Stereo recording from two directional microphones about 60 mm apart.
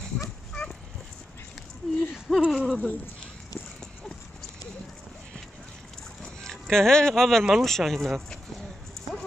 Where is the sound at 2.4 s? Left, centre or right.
Centre.